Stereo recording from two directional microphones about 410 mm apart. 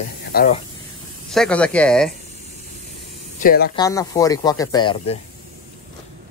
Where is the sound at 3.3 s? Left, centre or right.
Left.